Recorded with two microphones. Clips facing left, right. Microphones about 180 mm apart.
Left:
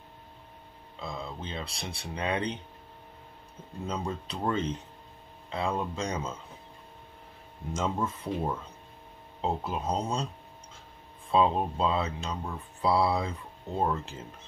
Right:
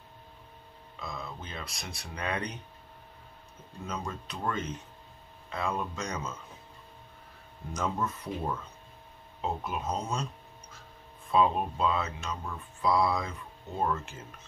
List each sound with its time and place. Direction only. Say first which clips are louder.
0.9 s speech: left 3 dB; 30° left (ahead or behind)
3.8 s speech: left 4 dB; 30° left (ahead or behind)
7.7 s speech: left 2 dB; 25° left (ahead or behind)
11.3 s speech: left 1 dB; 25° left (ahead or behind)